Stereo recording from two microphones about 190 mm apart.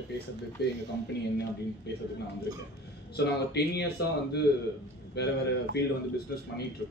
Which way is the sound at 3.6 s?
60° left (ahead or behind).